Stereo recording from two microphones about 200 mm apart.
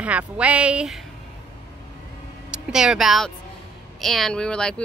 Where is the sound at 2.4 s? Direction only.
5° right (ahead or behind).